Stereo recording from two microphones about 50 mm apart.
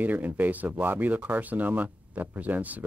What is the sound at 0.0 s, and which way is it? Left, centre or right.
Speech, right.